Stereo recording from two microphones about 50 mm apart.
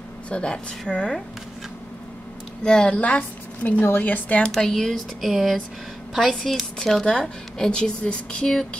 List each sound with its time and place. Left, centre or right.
0.3 s speech: left
2.6 s a woman's voice: centre
3.8 s speech: left
4.5 s speech: centre
5.2 s speech: centre